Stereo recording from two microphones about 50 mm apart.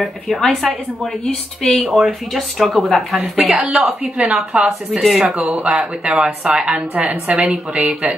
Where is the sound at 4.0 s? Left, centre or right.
Right.